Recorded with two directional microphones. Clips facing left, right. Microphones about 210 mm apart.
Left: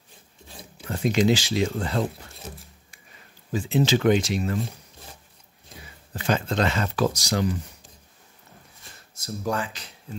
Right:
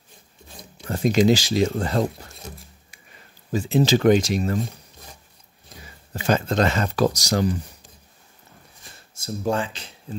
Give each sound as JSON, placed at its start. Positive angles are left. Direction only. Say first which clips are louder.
{"t": 0.8, "sound": "speech", "louder": "right 3 dB", "side_deg": -40}
{"t": 3.5, "sound": "speech", "louder": "right 3 dB", "side_deg": -40}
{"t": 6.2, "sound": "speech", "louder": "right 3 dB", "side_deg": -40}
{"t": 9.1, "sound": "a sound", "louder": "right 4 dB", "side_deg": -30}